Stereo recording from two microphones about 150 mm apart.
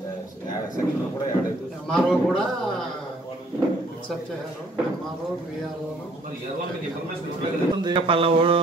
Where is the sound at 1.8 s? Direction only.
5° left (ahead or behind).